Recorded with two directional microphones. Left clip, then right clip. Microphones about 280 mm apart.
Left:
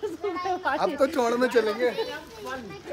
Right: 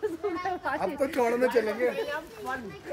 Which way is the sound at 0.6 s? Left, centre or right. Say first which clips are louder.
Left 6 dB; centre.